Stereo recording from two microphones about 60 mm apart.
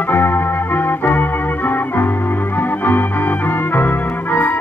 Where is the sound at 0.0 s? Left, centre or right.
Left.